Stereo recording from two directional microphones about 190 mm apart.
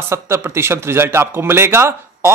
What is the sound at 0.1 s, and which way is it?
A man's voice, 15° right (ahead or behind).